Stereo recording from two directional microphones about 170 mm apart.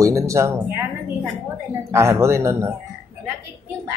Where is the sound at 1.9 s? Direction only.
15° right (ahead or behind).